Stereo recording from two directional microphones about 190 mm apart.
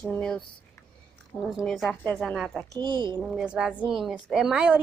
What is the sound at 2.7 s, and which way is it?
Speech, 25° right (ahead or behind).